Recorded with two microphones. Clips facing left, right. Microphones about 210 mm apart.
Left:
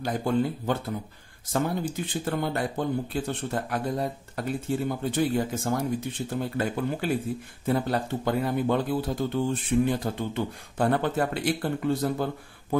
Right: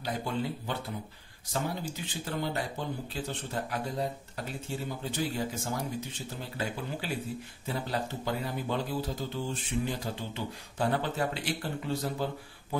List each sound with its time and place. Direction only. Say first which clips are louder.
0.0 s speech: left 7 dB; 50° left (ahead or behind)